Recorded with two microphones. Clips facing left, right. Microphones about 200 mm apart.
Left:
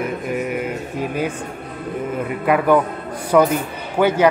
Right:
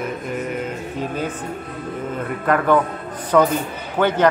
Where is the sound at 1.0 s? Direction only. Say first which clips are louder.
Left 2 dB; 10° left (ahead or behind).